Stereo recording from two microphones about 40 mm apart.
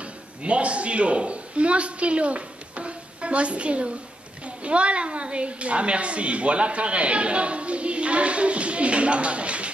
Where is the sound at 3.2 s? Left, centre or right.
Right.